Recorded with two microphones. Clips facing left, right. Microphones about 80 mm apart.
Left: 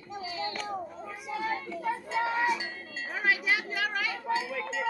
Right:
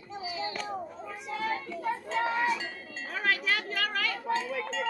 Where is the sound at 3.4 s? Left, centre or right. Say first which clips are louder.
Left 1 dB; centre.